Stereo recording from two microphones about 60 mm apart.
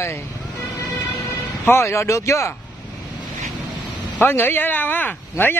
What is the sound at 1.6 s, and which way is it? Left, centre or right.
Speech, left.